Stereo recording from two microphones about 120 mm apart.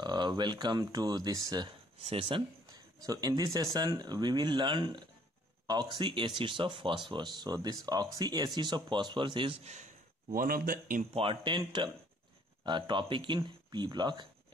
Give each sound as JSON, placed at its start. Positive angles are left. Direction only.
{"t": 0.0, "sound": "speech", "side_deg": -40}
{"t": 2.0, "sound": "speech", "side_deg": -50}
{"t": 2.6, "sound": "a man's voice", "side_deg": -30}
{"t": 9.6, "sound": "speech", "side_deg": -80}
{"t": 11.1, "sound": "speech", "side_deg": -45}